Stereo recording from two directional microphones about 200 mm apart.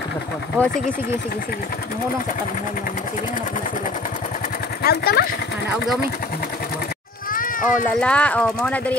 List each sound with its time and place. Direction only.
0.6 s speech: 10° right (ahead or behind)
4.8 s speech: 50° left (ahead or behind)
7.3 s sheep: 40° left (ahead or behind)
8.0 s speech: 5° left (ahead or behind)